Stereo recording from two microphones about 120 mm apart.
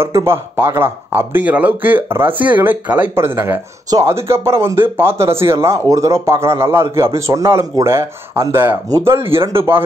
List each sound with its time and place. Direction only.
0.0 s speech: 20° right (ahead or behind)